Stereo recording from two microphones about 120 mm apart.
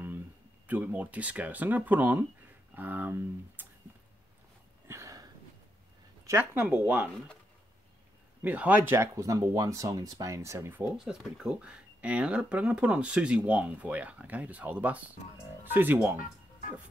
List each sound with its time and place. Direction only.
0.7 s speech: 15° right (ahead or behind)
4.8 s a sound: 25° right (ahead or behind)
6.2 s speech: 20° right (ahead or behind)
8.4 s speech: 15° right (ahead or behind)
11.0 s speech: 5° right (ahead or behind)